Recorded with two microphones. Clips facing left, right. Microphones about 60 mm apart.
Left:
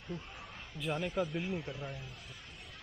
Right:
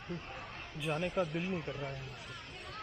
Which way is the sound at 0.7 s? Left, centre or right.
Centre.